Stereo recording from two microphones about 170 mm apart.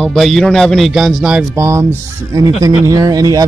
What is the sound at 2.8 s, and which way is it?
Speech, 20° right (ahead or behind).